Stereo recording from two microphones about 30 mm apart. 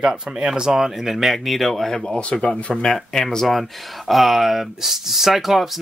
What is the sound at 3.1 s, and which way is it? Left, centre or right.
Speech, centre.